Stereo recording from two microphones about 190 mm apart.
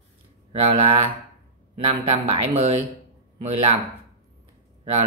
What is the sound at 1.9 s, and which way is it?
Speech, 30° right (ahead or behind).